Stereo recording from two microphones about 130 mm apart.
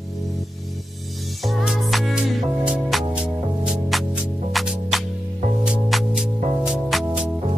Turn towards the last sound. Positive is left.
turn(degrees=-5)  # may be behind; listen again after turning